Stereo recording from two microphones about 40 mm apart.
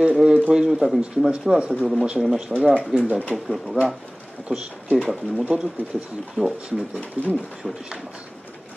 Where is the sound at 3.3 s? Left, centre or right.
Centre.